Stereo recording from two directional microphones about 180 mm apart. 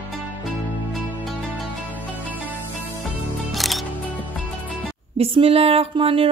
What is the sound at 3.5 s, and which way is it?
Music, centre (ahead or behind).